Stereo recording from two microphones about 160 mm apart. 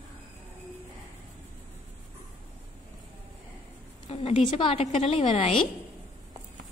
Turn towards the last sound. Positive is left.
turn(degrees=40)  # may be behind; listen again after turning